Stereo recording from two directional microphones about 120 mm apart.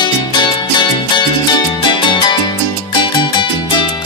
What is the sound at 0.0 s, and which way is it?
Music, 40° left (ahead or behind).